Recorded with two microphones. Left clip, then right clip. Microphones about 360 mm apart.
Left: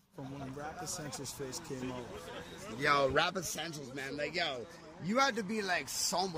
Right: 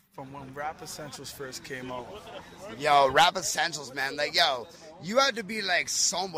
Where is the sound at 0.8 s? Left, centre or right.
Centre.